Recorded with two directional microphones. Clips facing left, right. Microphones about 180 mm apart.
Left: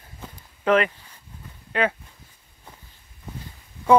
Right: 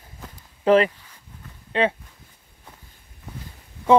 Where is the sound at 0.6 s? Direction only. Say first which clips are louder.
Right 3 dB; 30° right (ahead or behind).